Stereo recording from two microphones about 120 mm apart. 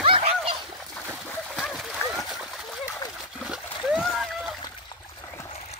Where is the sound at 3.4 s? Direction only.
5° right (ahead or behind).